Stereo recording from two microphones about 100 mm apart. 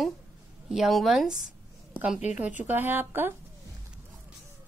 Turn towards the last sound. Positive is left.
turn(degrees=-20)  # may be behind; listen again after turning